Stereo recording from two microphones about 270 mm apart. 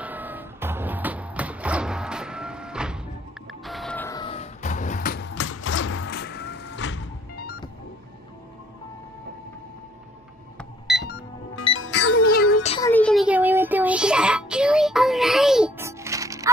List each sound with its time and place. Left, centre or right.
0.0 s cat: centre
3.6 s a sound: centre; by 7.5 s left
10.6 s music: centre
11.8 s music: left
12.6 s a sound: centre
12.9 s child singing: centre